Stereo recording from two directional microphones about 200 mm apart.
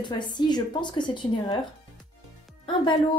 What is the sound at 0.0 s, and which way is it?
A woman's voice, 20° left (ahead or behind).